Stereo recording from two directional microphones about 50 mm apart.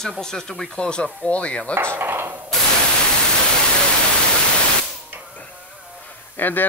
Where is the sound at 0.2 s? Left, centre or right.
Centre.